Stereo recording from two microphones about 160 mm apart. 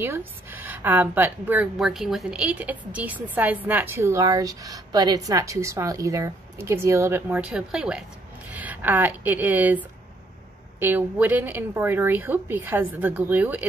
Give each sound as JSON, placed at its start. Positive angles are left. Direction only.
{"t": 0.0, "sound": "a woman's voice", "side_deg": -15}
{"t": 1.8, "sound": "a woman's voice", "side_deg": 0}